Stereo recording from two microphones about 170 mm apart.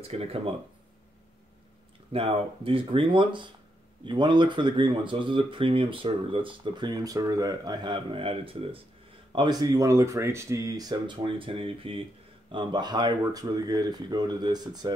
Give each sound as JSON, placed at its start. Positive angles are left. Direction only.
{"t": 0.0, "sound": "speech", "side_deg": -35}
{"t": 2.1, "sound": "speech", "side_deg": -30}